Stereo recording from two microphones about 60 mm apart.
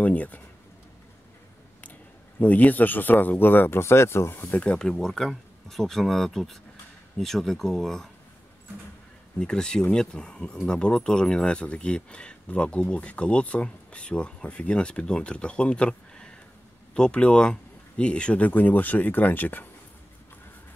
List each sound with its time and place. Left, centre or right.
0.0 s speech: left
2.4 s speech: left
4.6 s speech: centre
9.4 s speech: centre; by 19.7 s left